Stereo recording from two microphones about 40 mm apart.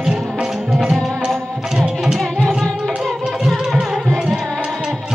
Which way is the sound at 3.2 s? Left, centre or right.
Centre.